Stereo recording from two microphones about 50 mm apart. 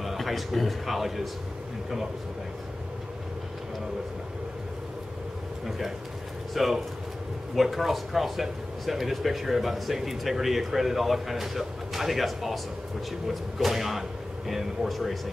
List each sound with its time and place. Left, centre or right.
0.0 s speech: centre
5.7 s speech: centre